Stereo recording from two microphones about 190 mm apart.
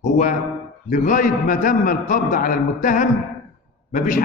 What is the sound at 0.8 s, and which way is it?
A man's voice, 45° left (ahead or behind).